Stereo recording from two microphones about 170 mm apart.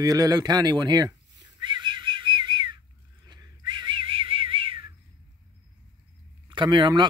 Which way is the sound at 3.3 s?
25° right (ahead or behind).